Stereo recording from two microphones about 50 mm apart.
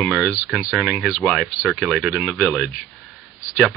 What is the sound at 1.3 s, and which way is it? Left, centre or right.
Speech, centre.